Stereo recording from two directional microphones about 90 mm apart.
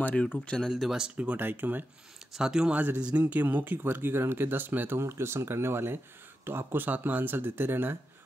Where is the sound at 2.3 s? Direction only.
5° right (ahead or behind).